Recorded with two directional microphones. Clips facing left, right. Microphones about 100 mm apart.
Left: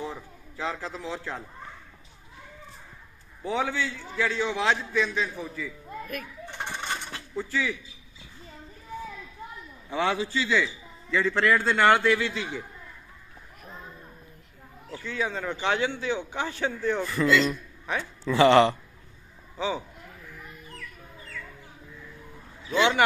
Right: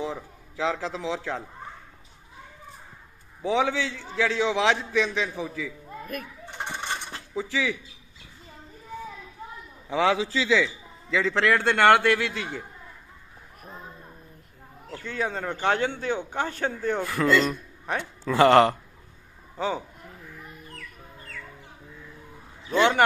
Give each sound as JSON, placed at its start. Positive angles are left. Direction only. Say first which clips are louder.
{"t": 0.0, "sound": "a man's voice", "louder": "right 4 dB", "side_deg": -90}
{"t": 3.4, "sound": "a man's voice", "louder": "right 4 dB", "side_deg": -90}
{"t": 6.4, "sound": "a sound", "louder": "right 1 dB", "side_deg": -15}
{"t": 7.3, "sound": "a man's voice", "louder": "right 2 dB", "side_deg": -90}
{"t": 10.1, "sound": "a man's voice", "louder": "right 3 dB", "side_deg": -90}
{"t": 14.9, "sound": "speech", "louder": "right 1 dB", "side_deg": -50}
{"t": 22.7, "sound": "speech", "louder": "right 2 dB", "side_deg": -45}